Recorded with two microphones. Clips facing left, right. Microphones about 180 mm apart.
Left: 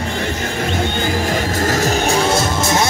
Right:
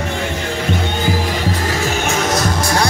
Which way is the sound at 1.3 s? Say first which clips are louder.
Left 2 dB; 45° left (ahead or behind).